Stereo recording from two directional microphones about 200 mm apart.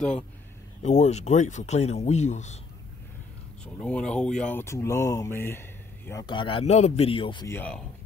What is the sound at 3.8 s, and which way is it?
Speech, 5° left (ahead or behind).